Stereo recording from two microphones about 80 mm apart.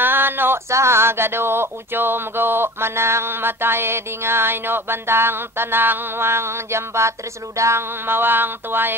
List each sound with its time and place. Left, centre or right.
0.0 s speech: right